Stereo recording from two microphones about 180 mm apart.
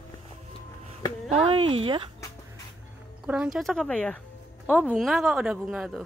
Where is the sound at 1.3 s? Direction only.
35° right (ahead or behind).